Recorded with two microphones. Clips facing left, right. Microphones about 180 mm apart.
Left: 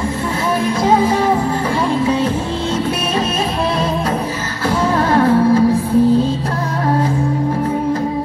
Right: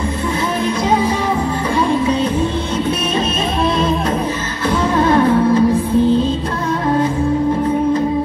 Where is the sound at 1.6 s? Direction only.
15° right (ahead or behind).